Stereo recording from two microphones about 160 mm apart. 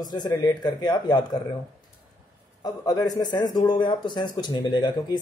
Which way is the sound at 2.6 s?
25° left (ahead or behind).